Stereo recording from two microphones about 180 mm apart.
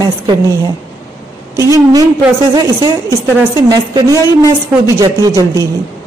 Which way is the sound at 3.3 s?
20° right (ahead or behind).